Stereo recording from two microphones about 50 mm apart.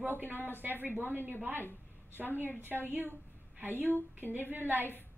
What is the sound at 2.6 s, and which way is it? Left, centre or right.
A woman's voice, right.